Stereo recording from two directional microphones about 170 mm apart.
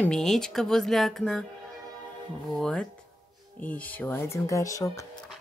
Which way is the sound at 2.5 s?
5° left (ahead or behind).